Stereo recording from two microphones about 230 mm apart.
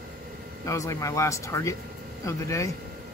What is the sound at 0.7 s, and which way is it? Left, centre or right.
Speech, centre.